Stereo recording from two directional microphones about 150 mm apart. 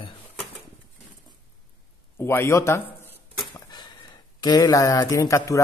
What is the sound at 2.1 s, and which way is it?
Speech, 15° left (ahead or behind).